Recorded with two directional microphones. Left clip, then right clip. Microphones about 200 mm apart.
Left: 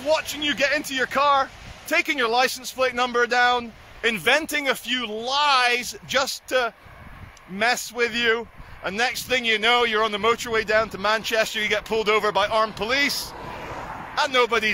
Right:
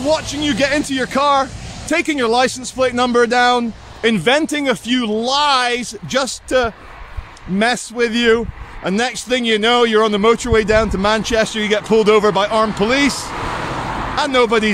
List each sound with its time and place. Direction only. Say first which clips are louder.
0.1 s speech: right 3 dB; 10° right (ahead or behind)
13.7 s vehicle: right 11 dB; 45° left (ahead or behind)
14.1 s speech: right 5 dB; 10° right (ahead or behind)